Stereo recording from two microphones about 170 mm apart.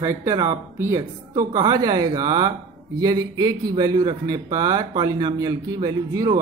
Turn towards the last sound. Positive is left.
turn(degrees=-20)  # may be behind; listen again after turning